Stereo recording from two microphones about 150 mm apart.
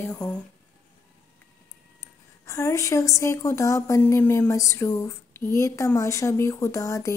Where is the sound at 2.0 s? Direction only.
20° left (ahead or behind).